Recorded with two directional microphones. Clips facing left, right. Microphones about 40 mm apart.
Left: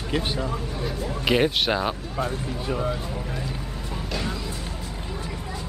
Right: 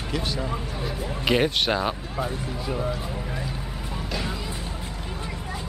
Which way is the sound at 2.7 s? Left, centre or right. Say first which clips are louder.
Left 2 dB; centre.